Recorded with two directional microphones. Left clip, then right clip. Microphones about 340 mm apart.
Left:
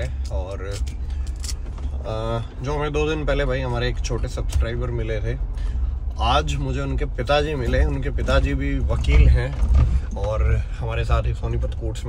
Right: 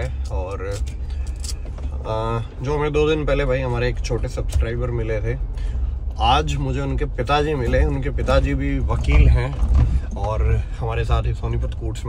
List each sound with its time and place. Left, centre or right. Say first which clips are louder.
0.0 s vehicle: right 2 dB; centre
2.0 s speech: right 3 dB; centre